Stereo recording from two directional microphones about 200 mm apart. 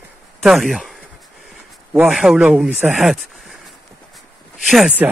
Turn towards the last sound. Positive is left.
turn(degrees=0)  # may be behind; listen again after turning